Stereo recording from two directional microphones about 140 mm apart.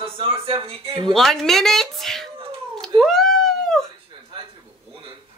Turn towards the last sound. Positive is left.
turn(degrees=0)  # may be behind; listen again after turning